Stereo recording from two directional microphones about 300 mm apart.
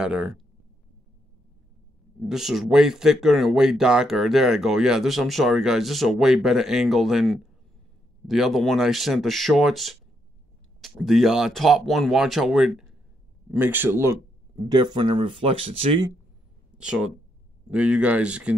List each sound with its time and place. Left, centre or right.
0.0 s speech: centre
2.2 s speech: centre
16.7 s speech: centre